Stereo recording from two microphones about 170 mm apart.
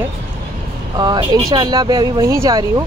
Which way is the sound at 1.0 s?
25° right (ahead or behind).